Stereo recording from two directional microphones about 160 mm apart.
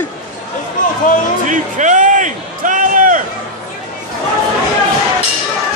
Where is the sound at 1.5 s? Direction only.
50° right (ahead or behind).